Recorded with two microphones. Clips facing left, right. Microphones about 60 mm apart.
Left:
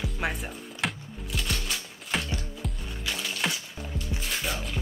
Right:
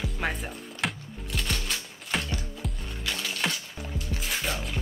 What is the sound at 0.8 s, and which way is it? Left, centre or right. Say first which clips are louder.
Music: even; centre.